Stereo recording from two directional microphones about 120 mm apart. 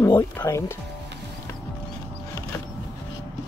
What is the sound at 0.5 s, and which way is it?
Speech, 25° left (ahead or behind).